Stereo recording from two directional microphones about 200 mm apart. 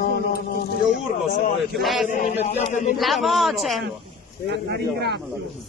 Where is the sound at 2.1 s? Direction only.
35° left (ahead or behind).